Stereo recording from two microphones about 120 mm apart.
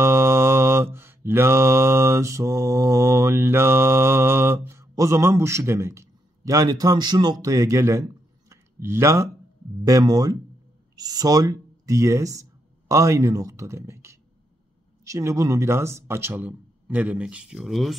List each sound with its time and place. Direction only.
0.0 s mantra: 20° right (ahead or behind)
9.8 s speech: 30° right (ahead or behind); by 17.9 s centre (ahead or behind)